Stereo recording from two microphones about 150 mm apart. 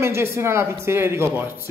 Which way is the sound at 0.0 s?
15° right (ahead or behind).